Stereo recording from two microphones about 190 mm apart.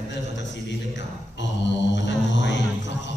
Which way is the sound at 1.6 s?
70° left (ahead or behind).